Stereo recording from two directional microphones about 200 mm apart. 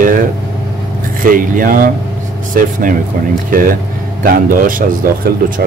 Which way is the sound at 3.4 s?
45° right (ahead or behind).